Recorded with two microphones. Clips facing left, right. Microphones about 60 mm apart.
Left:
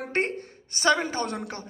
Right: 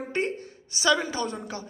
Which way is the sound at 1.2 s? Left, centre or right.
Left.